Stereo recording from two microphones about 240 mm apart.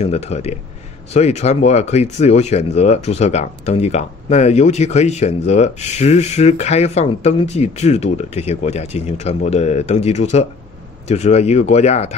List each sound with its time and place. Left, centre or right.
0.0 s speech: left